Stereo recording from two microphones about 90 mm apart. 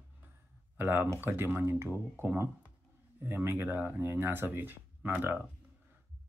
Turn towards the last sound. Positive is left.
turn(degrees=-25)  # may be behind; listen again after turning